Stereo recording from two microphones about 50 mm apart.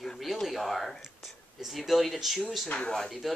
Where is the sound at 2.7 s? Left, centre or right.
Left.